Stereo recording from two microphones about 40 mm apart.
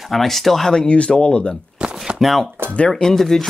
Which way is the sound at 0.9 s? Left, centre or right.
Left.